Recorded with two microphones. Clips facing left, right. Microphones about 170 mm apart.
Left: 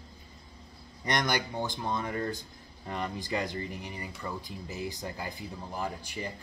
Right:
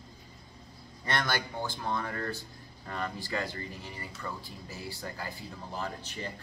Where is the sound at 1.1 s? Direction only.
15° left (ahead or behind).